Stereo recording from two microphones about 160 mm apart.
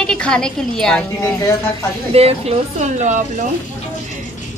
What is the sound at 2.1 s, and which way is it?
A woman's voice, 40° right (ahead or behind).